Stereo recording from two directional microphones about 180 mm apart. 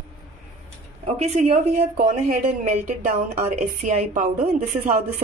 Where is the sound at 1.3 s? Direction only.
40° right (ahead or behind).